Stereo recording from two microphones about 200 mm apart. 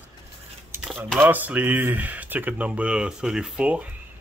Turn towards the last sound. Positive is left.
turn(degrees=-5)  # may be behind; listen again after turning